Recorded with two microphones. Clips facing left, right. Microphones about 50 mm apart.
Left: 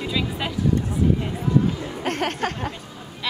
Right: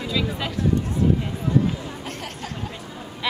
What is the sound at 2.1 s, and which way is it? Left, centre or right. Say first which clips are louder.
Speech: left 9 dB; left.